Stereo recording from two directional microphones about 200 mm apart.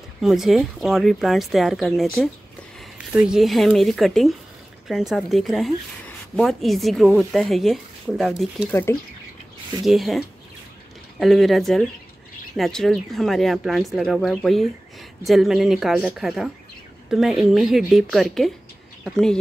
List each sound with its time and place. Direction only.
0.2 s a woman's voice: centre (ahead or behind)
9.8 s a woman's voice: centre (ahead or behind)